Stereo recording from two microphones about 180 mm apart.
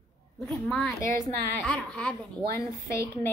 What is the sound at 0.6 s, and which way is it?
A woman's voice, 5° left (ahead or behind).